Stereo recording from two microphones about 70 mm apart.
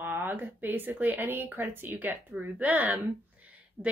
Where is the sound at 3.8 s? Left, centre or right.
Centre.